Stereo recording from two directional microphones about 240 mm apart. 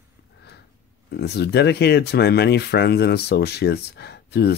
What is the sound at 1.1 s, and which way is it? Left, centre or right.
Speech, left.